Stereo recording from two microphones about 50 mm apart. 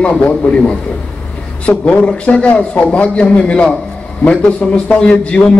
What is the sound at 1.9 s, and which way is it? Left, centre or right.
Speech, left.